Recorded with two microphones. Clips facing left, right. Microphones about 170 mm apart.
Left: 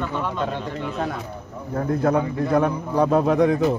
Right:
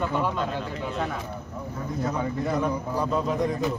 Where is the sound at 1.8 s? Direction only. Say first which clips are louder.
Left 9 dB; 60° left (ahead or behind).